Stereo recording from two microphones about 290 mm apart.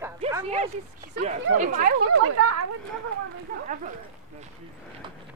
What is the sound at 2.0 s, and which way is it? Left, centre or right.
Speech, right.